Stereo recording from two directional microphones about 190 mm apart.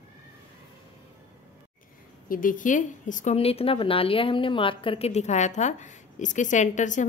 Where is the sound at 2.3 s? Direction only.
45° left (ahead or behind).